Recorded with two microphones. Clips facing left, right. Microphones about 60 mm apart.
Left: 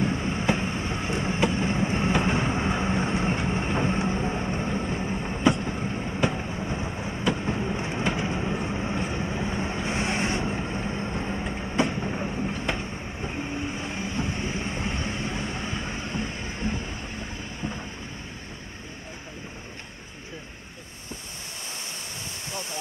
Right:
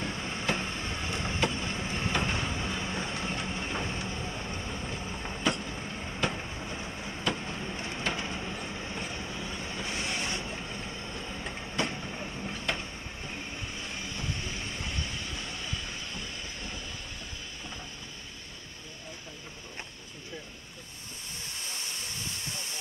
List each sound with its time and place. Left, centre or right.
0.0 s train: left
5.7 s vehicle: left
12.0 s train: left